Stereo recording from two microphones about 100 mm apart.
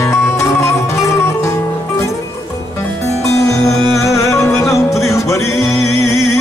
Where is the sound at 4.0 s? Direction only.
30° left (ahead or behind).